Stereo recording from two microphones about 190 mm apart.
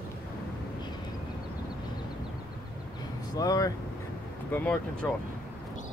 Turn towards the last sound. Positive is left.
turn(degrees=5)  # may be behind; listen again after turning